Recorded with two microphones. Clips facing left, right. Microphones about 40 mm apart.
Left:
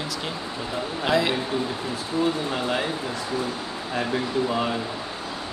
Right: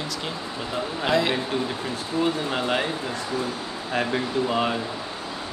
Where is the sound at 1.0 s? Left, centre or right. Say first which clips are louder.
Even; centre.